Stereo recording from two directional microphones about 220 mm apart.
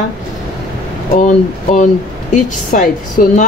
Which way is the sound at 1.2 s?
35° left (ahead or behind).